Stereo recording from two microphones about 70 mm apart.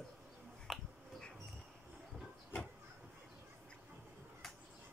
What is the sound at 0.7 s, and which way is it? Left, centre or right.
Finger snapping, centre.